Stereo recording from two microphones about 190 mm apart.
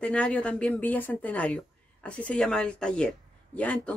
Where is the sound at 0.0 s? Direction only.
5° left (ahead or behind).